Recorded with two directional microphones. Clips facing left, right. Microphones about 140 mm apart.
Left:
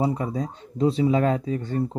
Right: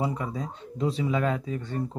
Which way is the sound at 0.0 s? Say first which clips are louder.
Left 5 dB; 35° left (ahead or behind).